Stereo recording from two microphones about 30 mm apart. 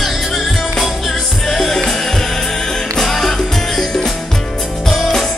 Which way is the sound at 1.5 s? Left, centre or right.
Centre.